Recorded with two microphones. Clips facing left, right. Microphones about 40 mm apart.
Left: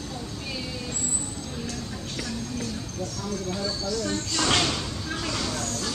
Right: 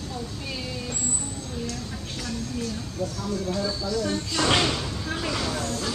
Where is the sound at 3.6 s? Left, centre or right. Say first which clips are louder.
Right 2 dB; centre.